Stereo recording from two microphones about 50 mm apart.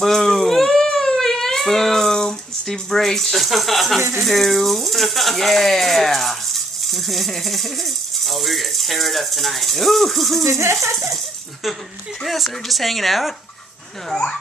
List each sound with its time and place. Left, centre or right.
0.0 s baby cry: centre
4.2 s speech: centre
10.4 s speech: right
12.2 s speech: centre